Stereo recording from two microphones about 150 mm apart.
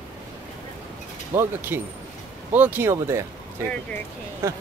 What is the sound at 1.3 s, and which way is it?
Speech, 15° right (ahead or behind).